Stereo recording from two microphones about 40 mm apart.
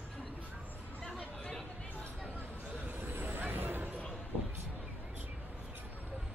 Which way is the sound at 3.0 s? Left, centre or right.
Right.